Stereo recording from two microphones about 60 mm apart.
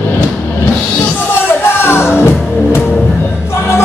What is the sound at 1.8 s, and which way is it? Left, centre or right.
Music, left.